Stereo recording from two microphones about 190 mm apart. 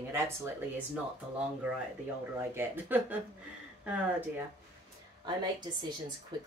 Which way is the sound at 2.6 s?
10° right (ahead or behind).